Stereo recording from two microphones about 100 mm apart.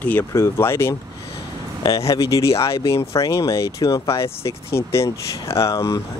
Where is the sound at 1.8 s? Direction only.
40° left (ahead or behind).